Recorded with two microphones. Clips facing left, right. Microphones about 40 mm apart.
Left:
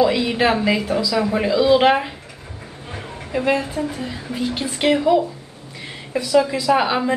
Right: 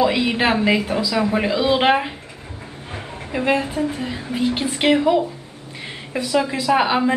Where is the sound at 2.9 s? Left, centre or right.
Centre.